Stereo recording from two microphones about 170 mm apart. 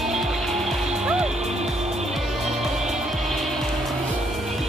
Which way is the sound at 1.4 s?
40° right (ahead or behind).